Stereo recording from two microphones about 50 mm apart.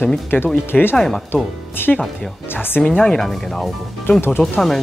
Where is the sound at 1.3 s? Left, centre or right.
Left.